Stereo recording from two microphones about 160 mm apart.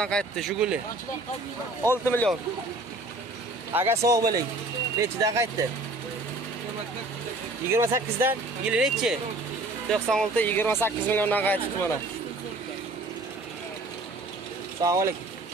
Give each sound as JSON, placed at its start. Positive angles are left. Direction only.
{"t": 0.0, "sound": "speech", "side_deg": 5}
{"t": 1.9, "sound": "speech", "side_deg": 15}
{"t": 3.7, "sound": "speech", "side_deg": -15}
{"t": 7.7, "sound": "speech", "side_deg": -15}
{"t": 14.8, "sound": "speech", "side_deg": -20}